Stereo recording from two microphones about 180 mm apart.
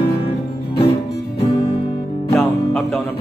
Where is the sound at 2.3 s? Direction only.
10° left (ahead or behind).